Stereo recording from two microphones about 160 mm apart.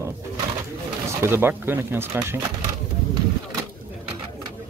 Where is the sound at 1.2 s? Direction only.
15° right (ahead or behind).